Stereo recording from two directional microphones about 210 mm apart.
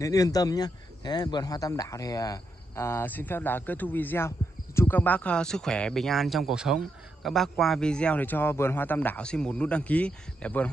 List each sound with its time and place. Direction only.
0.0 s a man's voice: 15° left (ahead or behind)